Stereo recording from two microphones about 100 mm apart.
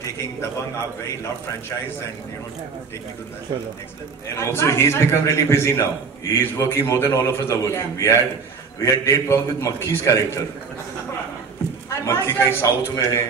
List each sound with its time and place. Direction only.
4.4 s a man's voice: 30° left (ahead or behind)
11.9 s a man's voice: 30° left (ahead or behind)